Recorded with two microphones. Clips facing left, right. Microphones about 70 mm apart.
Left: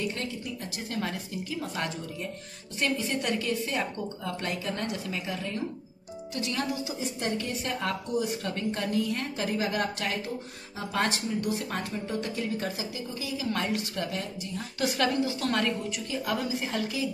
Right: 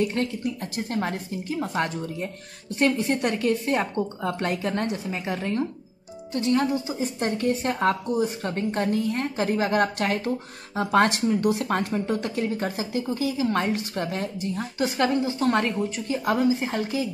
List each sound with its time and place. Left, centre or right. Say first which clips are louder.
0.0 s a woman's voice: right 8 dB; right
14.8 s a woman's voice: right 3 dB; right